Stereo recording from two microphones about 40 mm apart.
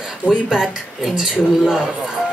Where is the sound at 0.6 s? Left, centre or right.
Centre.